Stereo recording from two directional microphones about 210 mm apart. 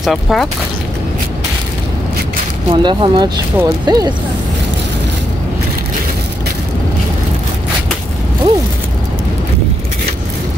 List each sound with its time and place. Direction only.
0.0 s speech: centre (ahead or behind)
2.7 s speech: 20° right (ahead or behind)